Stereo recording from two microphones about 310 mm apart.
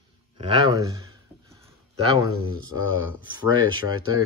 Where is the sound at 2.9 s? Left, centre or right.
Right.